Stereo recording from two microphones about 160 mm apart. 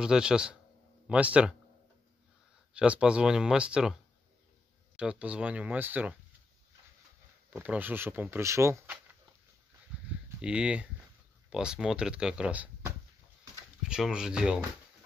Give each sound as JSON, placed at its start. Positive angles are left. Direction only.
{"t": 0.0, "sound": "speech", "side_deg": -5}
{"t": 2.7, "sound": "speech", "side_deg": -5}
{"t": 7.5, "sound": "speech", "side_deg": -10}
{"t": 10.4, "sound": "speech", "side_deg": -5}